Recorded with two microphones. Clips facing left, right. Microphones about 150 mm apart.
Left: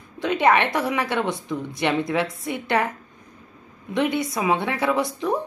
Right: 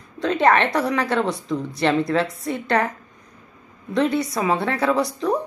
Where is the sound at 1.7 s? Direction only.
20° left (ahead or behind).